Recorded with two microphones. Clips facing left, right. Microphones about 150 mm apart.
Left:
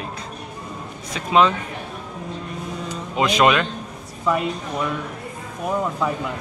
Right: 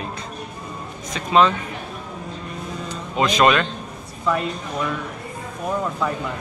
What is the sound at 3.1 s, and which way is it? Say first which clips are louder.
Speech: even; 10° left (ahead or behind).